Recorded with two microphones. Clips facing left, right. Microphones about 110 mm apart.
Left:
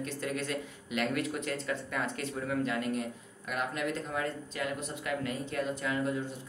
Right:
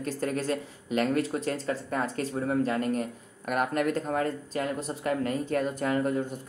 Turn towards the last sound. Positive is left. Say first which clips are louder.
# right 5 dB
turn(degrees=-45)  # may be behind; listen again after turning